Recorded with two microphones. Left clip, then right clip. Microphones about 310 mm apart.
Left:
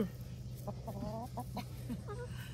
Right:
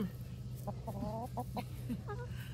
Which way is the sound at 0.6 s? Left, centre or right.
Right.